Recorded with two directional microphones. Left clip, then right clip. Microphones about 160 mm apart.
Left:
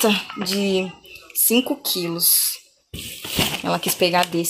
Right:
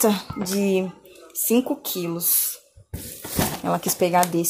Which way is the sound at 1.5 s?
5° right (ahead or behind).